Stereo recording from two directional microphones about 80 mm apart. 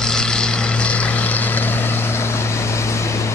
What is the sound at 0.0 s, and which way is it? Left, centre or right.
Vehicle, centre.